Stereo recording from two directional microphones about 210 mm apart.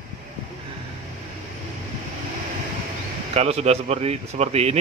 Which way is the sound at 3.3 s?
30° right (ahead or behind).